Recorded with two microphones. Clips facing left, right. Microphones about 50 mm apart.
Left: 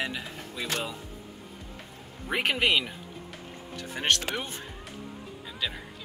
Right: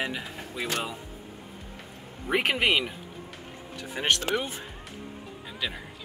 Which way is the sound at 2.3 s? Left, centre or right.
Centre.